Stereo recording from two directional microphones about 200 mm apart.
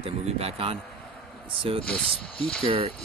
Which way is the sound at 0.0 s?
30° right (ahead or behind).